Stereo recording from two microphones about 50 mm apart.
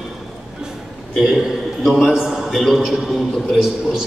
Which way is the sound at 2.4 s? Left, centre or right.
Centre.